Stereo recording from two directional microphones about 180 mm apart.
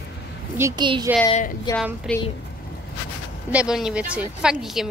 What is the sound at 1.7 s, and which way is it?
Speech, 20° left (ahead or behind).